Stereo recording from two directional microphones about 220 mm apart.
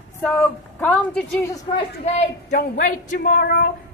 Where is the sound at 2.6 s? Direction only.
35° left (ahead or behind).